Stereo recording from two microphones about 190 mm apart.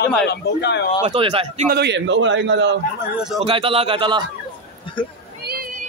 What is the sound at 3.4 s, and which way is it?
Speech, 30° right (ahead or behind).